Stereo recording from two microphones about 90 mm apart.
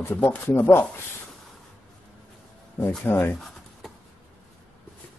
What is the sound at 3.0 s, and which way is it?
Speech, 25° left (ahead or behind).